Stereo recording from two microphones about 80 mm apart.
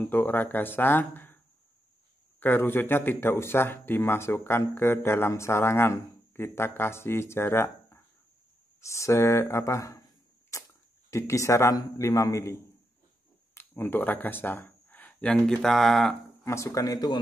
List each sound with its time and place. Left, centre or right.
0.1 s speech: left
2.4 s speech: left
10.5 s a sound: left
11.1 s speech: left
13.6 s speech: left; by 16.2 s centre
16.4 s speech: left